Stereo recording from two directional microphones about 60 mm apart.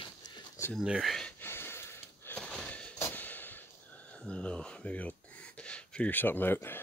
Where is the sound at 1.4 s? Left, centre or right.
Left.